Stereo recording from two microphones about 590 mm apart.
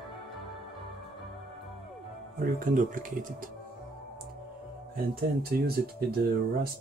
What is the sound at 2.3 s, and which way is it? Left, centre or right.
Speech, centre.